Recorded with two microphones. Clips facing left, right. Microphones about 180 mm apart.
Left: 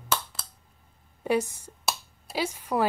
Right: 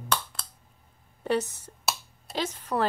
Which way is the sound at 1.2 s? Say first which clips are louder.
Left 1 dB; 10° left (ahead or behind).